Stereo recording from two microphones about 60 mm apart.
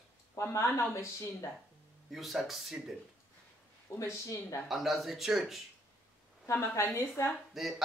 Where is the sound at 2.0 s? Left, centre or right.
Centre.